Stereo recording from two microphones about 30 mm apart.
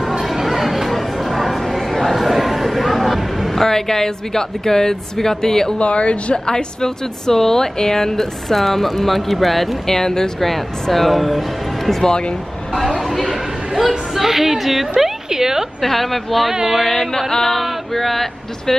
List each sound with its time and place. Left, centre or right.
0.2 s chatter: centre
3.5 s speech: centre
5.8 s speech: left
6.4 s speech: left; by 9.8 s centre
9.8 s speech: centre
10.4 s speech: centre
12.0 s speech: left
13.0 s chatter: centre
13.7 s a sound: centre
15.2 s a sound: centre
15.8 s speech: centre